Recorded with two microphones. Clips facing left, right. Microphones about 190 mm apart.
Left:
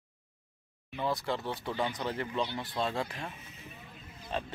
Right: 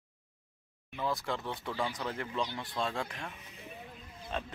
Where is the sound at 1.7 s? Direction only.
20° left (ahead or behind).